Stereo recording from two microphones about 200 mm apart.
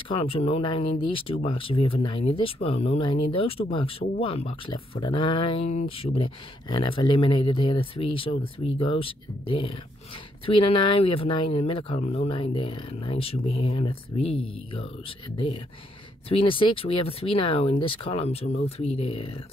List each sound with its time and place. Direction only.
0.1 s speech: 30° left (ahead or behind)